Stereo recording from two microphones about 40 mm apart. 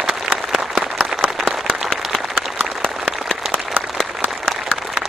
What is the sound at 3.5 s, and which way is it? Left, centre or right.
Applause, right.